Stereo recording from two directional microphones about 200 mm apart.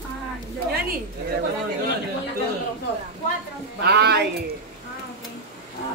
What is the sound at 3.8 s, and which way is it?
Music, 55° right (ahead or behind).